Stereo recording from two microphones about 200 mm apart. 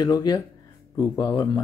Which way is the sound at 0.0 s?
20° left (ahead or behind).